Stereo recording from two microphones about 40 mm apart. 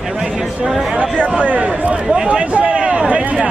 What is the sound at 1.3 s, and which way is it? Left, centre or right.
Speech, right.